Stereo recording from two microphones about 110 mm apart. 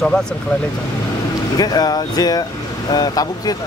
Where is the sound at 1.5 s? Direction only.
35° left (ahead or behind).